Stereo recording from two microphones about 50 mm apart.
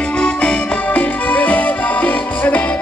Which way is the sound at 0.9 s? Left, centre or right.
Left.